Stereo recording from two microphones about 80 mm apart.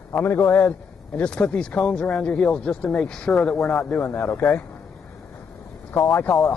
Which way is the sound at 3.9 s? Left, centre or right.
Left.